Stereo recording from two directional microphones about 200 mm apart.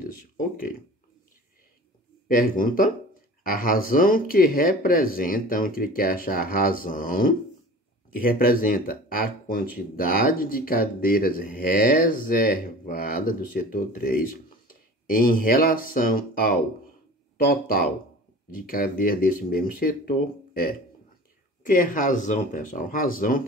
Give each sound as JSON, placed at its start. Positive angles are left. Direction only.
{"t": 0.0, "sound": "speech", "side_deg": 45}
{"t": 2.2, "sound": "speech", "side_deg": 45}